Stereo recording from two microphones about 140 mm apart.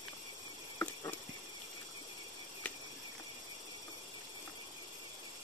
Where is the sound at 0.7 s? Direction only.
20° left (ahead or behind).